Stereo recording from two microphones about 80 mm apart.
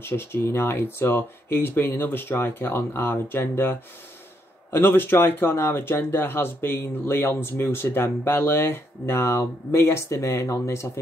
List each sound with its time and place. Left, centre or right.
0.0 s speech: left
4.7 s speech: left